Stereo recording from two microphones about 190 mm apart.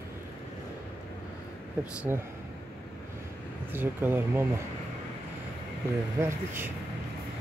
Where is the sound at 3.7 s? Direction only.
10° right (ahead or behind).